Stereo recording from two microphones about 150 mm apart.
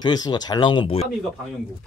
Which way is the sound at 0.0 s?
25° left (ahead or behind).